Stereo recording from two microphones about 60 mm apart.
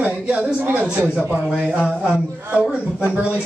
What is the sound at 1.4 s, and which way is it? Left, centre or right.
Speech, centre.